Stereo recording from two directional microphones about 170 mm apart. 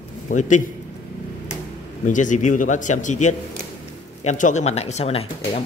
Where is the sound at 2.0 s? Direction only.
50° left (ahead or behind).